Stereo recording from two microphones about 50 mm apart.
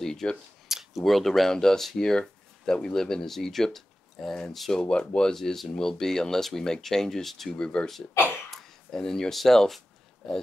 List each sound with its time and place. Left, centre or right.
0.0 s a sound: centre
0.7 s a sound: centre
1.0 s speech: centre
5.3 s speech: centre
7.5 s speech: centre
8.9 s speech: centre